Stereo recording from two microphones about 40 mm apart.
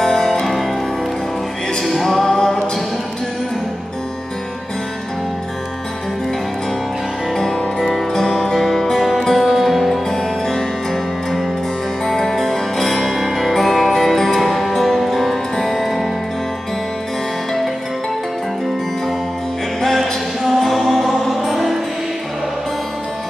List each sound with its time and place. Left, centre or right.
0.0 s music: centre
1.8 s music: centre
7.3 s music: centre
9.4 s music: centre
10.0 s music: centre
12.0 s music: centre
19.8 s music: centre